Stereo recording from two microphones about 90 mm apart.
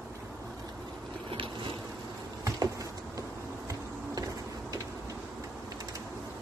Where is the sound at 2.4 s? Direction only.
40° right (ahead or behind).